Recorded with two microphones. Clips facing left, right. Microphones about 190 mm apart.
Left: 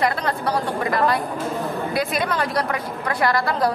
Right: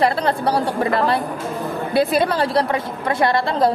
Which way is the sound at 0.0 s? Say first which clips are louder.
Right 4 dB; 30° right (ahead or behind).